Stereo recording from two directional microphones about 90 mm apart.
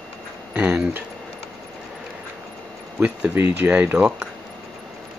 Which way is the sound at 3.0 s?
15° right (ahead or behind).